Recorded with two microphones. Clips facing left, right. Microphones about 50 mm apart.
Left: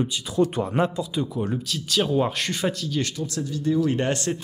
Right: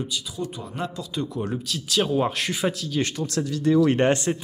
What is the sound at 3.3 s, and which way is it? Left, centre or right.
Speech, right.